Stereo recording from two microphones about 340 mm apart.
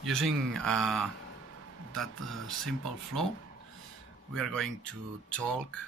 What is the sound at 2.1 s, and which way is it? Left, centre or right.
Speech, right.